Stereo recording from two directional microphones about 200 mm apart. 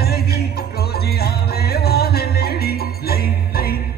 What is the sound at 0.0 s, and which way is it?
Music, 50° left (ahead or behind).